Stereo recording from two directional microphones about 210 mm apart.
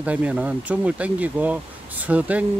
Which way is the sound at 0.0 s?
5° right (ahead or behind).